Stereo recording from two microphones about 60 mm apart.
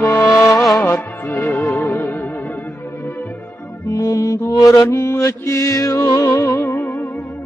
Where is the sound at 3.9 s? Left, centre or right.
Left.